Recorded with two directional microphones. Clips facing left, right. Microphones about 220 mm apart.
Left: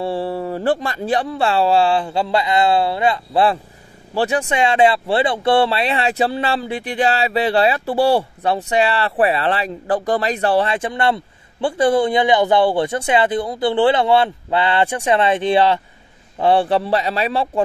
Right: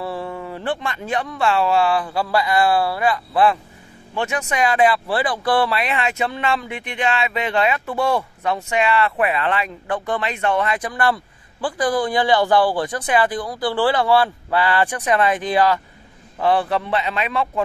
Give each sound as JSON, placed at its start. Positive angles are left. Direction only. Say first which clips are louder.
{"t": 0.0, "sound": "a man's voice", "louder": "left 6 dB", "side_deg": 30}